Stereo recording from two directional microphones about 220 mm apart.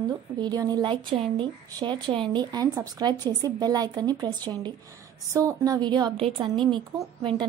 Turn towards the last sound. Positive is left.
turn(degrees=-20)  # may be behind; listen again after turning